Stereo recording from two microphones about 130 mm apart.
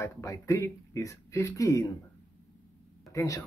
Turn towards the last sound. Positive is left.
turn(degrees=25)  # may be behind; listen again after turning